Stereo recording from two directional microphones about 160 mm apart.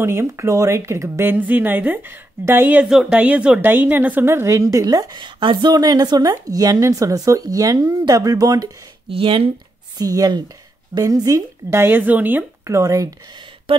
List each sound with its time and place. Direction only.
0.0 s speech: 15° right (ahead or behind)
9.1 s speech: 35° right (ahead or behind)
9.9 s speech: 25° right (ahead or behind)
13.7 s speech: 35° right (ahead or behind)